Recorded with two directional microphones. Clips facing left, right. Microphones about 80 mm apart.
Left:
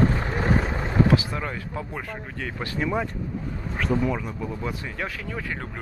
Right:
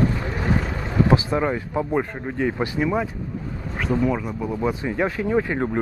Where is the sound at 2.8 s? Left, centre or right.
Centre.